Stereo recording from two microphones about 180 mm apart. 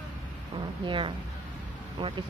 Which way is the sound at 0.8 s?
25° right (ahead or behind).